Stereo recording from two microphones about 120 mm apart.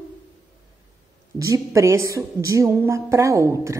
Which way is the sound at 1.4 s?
25° right (ahead or behind).